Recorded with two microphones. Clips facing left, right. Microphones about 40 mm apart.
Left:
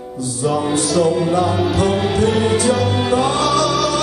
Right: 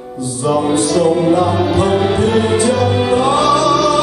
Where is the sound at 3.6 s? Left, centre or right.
Centre.